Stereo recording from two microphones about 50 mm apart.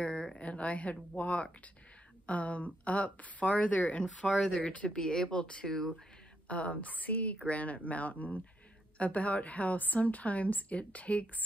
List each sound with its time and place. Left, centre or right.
0.0 s a sound: centre
0.4 s a woman's voice: left
4.3 s speech: centre
4.6 s speech: centre
6.4 s a woman's voice: left